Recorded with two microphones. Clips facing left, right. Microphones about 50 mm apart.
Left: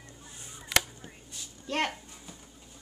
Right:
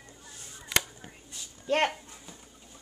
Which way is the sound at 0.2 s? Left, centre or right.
Centre.